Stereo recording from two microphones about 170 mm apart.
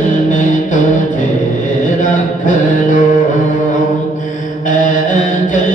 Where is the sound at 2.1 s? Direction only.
50° left (ahead or behind).